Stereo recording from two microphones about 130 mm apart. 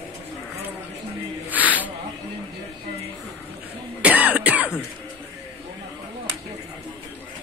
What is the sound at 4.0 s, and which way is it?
Cough, 10° right (ahead or behind).